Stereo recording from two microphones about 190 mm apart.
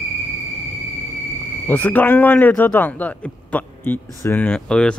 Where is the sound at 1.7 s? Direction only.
10° left (ahead or behind).